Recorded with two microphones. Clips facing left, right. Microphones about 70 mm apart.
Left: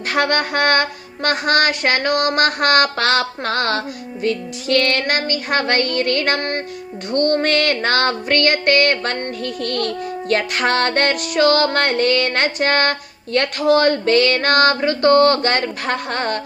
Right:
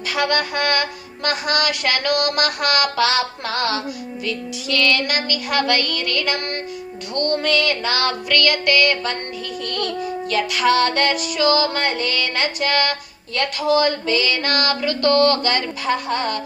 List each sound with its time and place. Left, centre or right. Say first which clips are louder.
0.1 s music: left 3 dB; left